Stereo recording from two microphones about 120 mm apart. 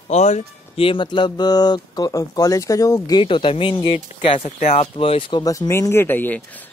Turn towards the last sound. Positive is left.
turn(degrees=15)  # may be behind; listen again after turning